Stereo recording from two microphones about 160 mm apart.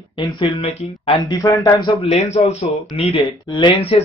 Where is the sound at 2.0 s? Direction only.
45° left (ahead or behind).